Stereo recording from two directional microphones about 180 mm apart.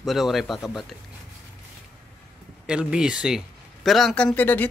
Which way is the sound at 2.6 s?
5° right (ahead or behind).